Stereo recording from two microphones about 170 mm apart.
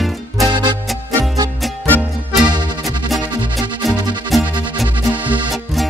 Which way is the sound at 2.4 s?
25° right (ahead or behind).